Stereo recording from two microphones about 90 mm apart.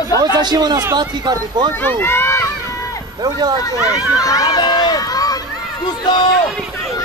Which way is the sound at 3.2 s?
50° right (ahead or behind).